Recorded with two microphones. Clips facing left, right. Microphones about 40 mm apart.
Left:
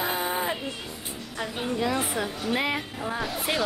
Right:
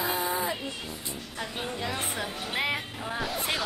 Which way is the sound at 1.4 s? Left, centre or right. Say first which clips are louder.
Left 6 dB; centre.